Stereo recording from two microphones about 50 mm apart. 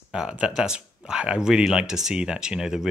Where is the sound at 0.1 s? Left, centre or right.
Centre.